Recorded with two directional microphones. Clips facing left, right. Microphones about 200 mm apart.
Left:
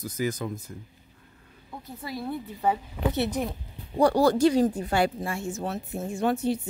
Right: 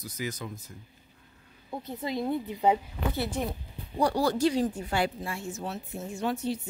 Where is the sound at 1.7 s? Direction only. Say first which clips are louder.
Right 4 dB; 20° right (ahead or behind).